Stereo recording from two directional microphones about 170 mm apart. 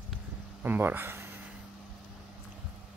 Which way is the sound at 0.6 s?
10° right (ahead or behind).